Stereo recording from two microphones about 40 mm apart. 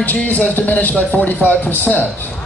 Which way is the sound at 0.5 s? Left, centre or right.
Left.